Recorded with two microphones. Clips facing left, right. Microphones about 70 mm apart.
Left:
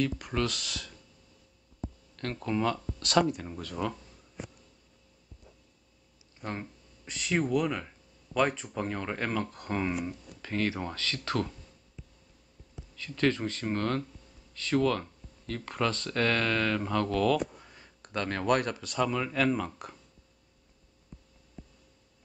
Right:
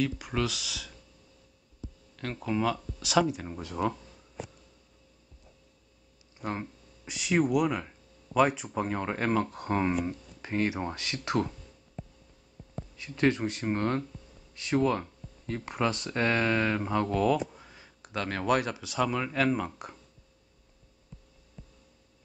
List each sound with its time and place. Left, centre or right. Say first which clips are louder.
0.0 s speech: even; centre
2.1 s speech: even; centre
3.4 s speech: right 1 dB; centre
6.4 s speech: right 3 dB; centre
12.9 s speech: right 1 dB; centre
17.6 s speech: right 1 dB; centre